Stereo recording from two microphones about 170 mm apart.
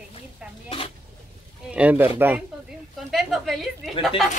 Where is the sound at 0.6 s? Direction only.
35° left (ahead or behind).